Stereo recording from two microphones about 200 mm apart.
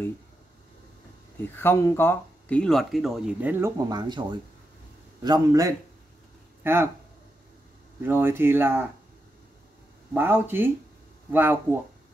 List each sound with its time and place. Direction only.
1.5 s speech: 10° left (ahead or behind); by 6.9 s 10° right (ahead or behind)
8.0 s speech: 10° right (ahead or behind)
10.1 s speech: 10° right (ahead or behind)